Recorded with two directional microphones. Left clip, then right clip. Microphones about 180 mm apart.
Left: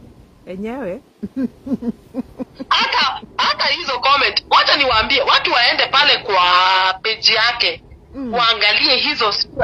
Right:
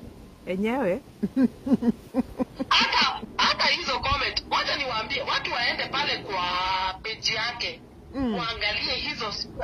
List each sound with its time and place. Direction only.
0.5 s speech: 5° right (ahead or behind)
2.7 s a woman's voice: 50° left (ahead or behind)